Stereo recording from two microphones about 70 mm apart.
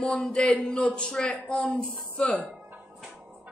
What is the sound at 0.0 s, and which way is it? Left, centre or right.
A man's voice, centre.